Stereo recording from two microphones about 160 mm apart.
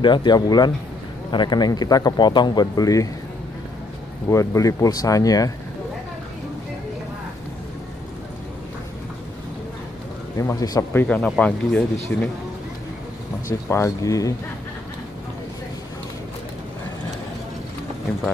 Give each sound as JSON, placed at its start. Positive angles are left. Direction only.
{"t": 0.0, "sound": "speech", "side_deg": 30}
{"t": 4.3, "sound": "speech", "side_deg": 20}
{"t": 10.3, "sound": "speech", "side_deg": 20}
{"t": 13.7, "sound": "speech", "side_deg": 20}